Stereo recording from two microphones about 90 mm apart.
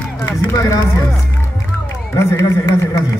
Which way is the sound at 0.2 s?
35° left (ahead or behind).